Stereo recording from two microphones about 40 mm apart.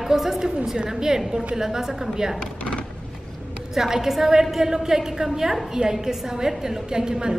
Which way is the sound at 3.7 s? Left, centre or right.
Centre.